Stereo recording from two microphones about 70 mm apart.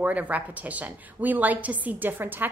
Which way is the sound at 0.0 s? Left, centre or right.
Right.